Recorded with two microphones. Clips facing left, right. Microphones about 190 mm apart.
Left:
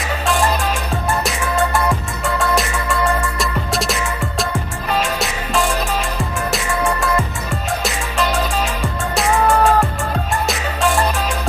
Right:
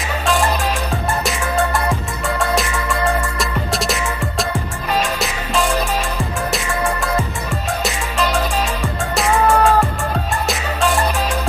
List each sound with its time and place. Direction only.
1.2 s music: centre (ahead or behind)